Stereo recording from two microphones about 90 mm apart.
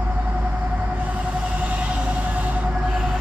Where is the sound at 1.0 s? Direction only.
15° right (ahead or behind).